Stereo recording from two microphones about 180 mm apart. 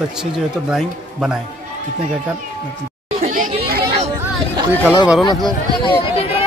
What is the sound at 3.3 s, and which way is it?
Children playing, 45° right (ahead or behind).